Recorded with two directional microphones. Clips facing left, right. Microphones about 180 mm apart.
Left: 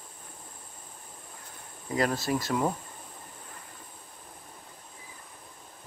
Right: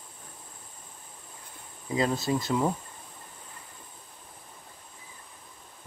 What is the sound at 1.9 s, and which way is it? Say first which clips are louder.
Speech: right 1 dB; 20° right (ahead or behind).